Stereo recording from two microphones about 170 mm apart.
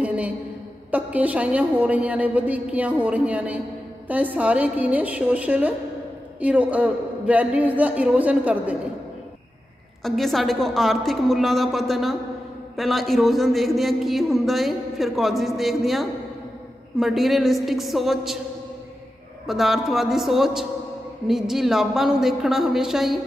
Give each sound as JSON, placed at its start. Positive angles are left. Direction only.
{"t": 0.0, "sound": "a sound", "side_deg": -5}
{"t": 0.9, "sound": "a woman's voice", "side_deg": -10}
{"t": 10.0, "sound": "a man's voice", "side_deg": 0}
{"t": 19.4, "sound": "a man's voice", "side_deg": 0}